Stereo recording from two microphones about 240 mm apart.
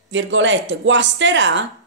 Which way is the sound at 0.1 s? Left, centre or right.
Right.